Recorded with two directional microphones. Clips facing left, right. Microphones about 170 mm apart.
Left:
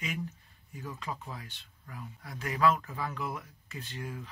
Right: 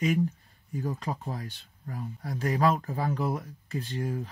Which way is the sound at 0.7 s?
40° right (ahead or behind).